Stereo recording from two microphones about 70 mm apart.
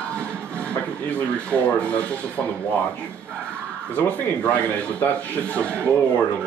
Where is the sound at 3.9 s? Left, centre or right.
Centre.